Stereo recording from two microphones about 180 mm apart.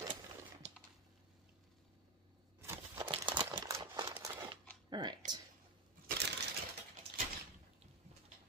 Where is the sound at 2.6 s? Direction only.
15° right (ahead or behind).